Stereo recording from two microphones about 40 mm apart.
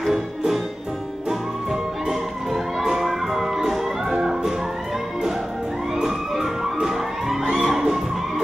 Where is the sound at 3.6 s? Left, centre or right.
Centre.